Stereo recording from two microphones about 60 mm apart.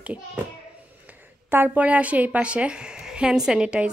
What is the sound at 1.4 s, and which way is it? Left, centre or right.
A woman's voice, right.